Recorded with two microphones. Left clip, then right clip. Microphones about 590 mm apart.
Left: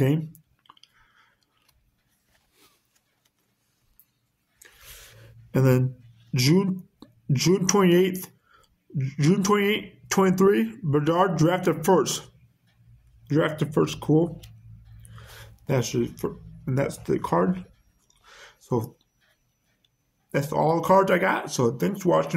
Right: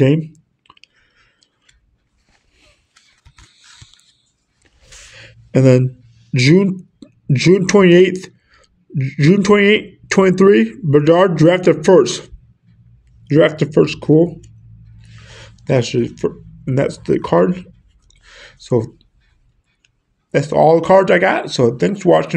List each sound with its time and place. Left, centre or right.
0.0 s clicking: left
5.2 s a sound: left
6.3 s speech: left
13.3 s speech: left
15.3 s a sound: left
20.2 s speech: left